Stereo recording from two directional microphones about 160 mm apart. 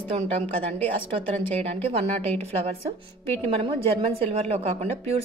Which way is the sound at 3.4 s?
35° right (ahead or behind).